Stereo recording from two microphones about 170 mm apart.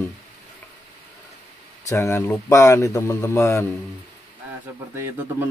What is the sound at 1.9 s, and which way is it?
Speech, 15° left (ahead or behind).